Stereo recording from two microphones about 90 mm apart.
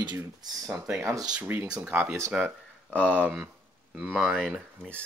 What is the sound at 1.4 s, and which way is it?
Speech, 25° right (ahead or behind).